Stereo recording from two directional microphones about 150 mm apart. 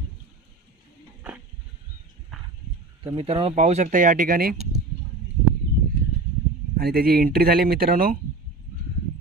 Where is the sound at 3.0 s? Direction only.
40° right (ahead or behind); by 4.5 s 65° right (ahead or behind).